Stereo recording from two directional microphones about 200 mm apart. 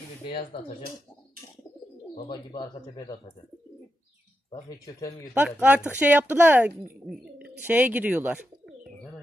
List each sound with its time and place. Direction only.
2.1 s speech: 25° left (ahead or behind)
4.5 s speech: 15° left (ahead or behind)
5.3 s speech: 10° right (ahead or behind)